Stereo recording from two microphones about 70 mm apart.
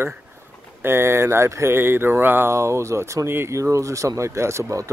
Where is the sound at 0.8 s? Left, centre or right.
Right.